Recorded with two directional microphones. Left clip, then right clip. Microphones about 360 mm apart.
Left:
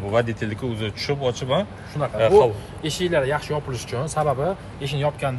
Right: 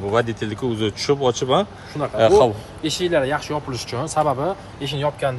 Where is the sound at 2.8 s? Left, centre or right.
Right.